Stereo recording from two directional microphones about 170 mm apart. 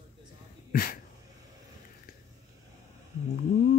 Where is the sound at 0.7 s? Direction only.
60° left (ahead or behind).